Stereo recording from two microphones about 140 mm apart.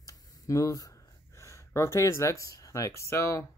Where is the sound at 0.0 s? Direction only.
25° left (ahead or behind).